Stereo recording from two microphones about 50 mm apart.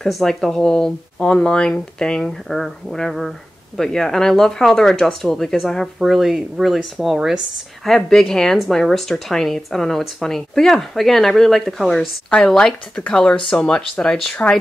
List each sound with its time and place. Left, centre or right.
0.1 s a woman's voice: centre
12.5 s speech: centre